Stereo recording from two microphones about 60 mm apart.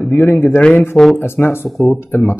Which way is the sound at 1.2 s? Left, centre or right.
Left.